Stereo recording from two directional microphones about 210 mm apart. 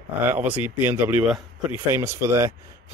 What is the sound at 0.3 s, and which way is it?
Speech, 10° right (ahead or behind).